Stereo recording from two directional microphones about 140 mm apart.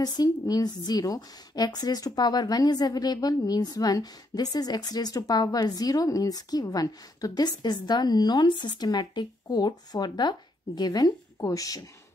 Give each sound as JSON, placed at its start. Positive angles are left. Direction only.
{"t": 0.0, "sound": "a woman's voice", "side_deg": 30}